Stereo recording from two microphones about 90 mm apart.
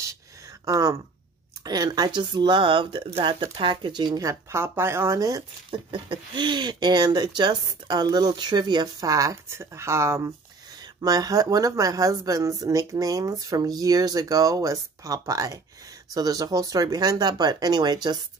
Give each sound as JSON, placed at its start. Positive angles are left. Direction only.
{"t": 0.7, "sound": "speech", "side_deg": -45}
{"t": 4.2, "sound": "speech", "side_deg": -35}
{"t": 5.7, "sound": "speech", "side_deg": -65}
{"t": 11.0, "sound": "speech", "side_deg": -45}